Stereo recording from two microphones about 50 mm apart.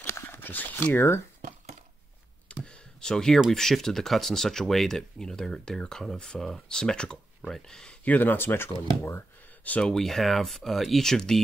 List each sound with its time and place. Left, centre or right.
0.3 s speech: left
0.9 s speech: left
2.4 s a sound: centre
3.5 s speech: centre
8.0 s speech: left
9.8 s speech: centre
10.0 s speech: centre